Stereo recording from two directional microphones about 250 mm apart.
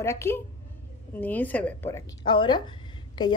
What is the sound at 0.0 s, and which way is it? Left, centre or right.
A woman's voice, centre.